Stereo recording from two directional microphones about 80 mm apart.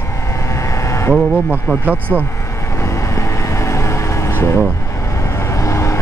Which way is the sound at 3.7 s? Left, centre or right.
Left.